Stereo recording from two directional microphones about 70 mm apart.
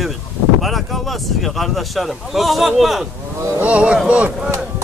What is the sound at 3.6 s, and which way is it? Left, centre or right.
Speech, centre.